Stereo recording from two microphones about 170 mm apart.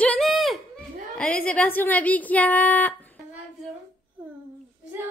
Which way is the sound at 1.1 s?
5° left (ahead or behind).